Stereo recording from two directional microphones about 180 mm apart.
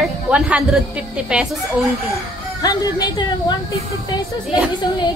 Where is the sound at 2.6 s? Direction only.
20° left (ahead or behind).